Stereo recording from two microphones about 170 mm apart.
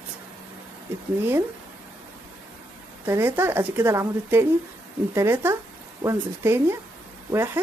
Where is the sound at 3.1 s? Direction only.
15° right (ahead or behind).